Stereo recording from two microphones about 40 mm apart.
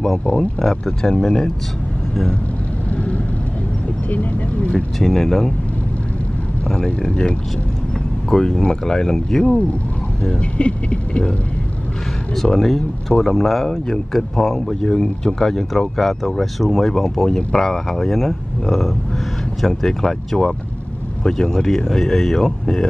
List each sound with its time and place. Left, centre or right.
0.7 s speech: centre
1.1 s speech: centre
2.9 s vehicle: left
4.1 s speech: left
5.0 s speech: centre
6.7 s speech: left
10.2 s speech: left
12.5 s speech: centre